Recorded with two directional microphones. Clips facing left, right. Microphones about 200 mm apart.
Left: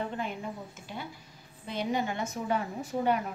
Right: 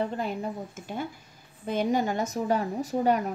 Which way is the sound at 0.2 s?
40° right (ahead or behind).